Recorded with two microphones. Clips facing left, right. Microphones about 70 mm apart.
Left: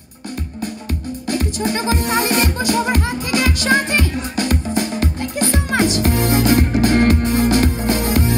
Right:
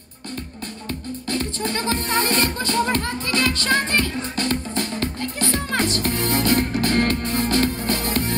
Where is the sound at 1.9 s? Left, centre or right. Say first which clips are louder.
Left 2 dB; centre.